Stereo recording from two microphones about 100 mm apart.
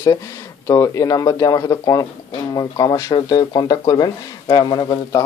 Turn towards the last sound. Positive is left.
turn(degrees=45)  # may be behind; listen again after turning